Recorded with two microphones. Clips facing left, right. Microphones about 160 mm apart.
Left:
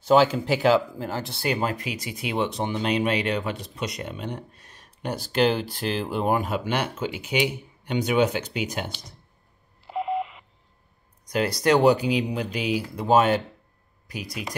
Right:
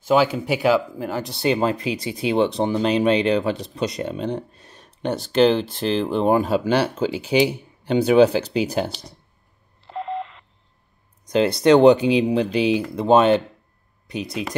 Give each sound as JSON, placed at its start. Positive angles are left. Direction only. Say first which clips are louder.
{"t": 0.1, "sound": "speech", "louder": "even", "side_deg": -10}
{"t": 5.6, "sound": "speech", "louder": "right 6 dB", "side_deg": 10}
{"t": 6.2, "sound": "speech", "louder": "right 6 dB", "side_deg": -30}
{"t": 9.8, "sound": "telephone dialing", "louder": "left 1 dB", "side_deg": 10}
{"t": 11.2, "sound": "speech", "louder": "right 6 dB", "side_deg": -25}